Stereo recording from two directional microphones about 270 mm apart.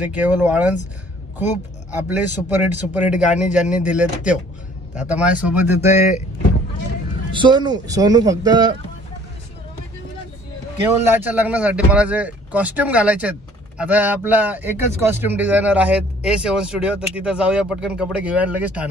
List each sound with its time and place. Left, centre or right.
0.0 s speech: centre
2.0 s speech: centre
5.9 s speech: left
7.3 s speech: centre
11.1 s speech: centre